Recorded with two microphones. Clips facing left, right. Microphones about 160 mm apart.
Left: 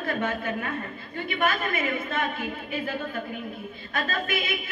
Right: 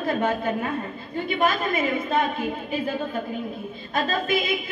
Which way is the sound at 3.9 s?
35° right (ahead or behind).